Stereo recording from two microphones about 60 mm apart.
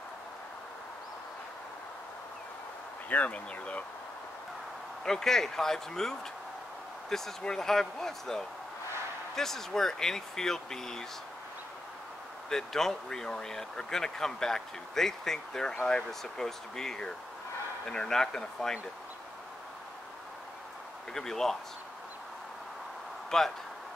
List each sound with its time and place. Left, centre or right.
3.1 s speech: left
5.0 s speech: centre
12.4 s speech: centre
16.1 s speech: centre
21.1 s speech: centre
23.3 s speech: centre